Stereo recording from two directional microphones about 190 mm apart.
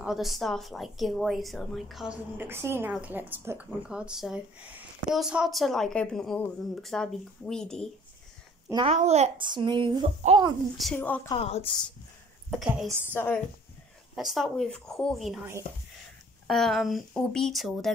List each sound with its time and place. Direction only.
0.0 s a woman's voice: centre (ahead or behind)
8.8 s a child's voice: 35° right (ahead or behind)
11.0 s a woman's voice: 10° left (ahead or behind)
11.2 s a woman's voice: 30° left (ahead or behind)
12.4 s a woman's voice: centre (ahead or behind)
13.0 s a woman's voice: 10° left (ahead or behind)
14.1 s a woman's voice: centre (ahead or behind)
16.4 s a woman's voice: centre (ahead or behind)